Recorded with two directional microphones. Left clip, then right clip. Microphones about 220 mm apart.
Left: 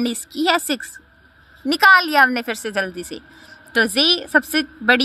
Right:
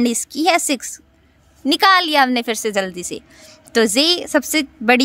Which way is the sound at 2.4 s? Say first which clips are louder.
Right 3 dB; 45° right (ahead or behind).